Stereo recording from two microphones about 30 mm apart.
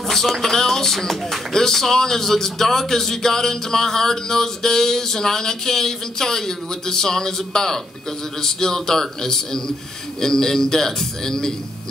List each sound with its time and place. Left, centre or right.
0.4 s speech: centre